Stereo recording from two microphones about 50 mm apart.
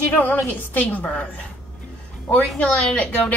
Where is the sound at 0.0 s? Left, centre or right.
Left.